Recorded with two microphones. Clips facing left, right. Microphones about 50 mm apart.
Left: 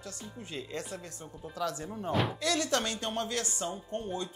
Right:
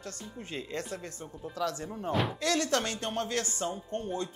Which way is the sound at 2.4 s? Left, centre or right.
Right.